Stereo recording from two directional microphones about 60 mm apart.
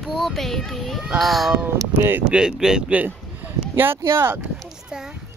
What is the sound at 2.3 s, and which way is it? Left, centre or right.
Speech, centre.